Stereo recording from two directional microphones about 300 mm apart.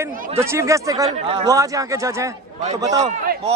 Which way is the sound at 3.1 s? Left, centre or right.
Right.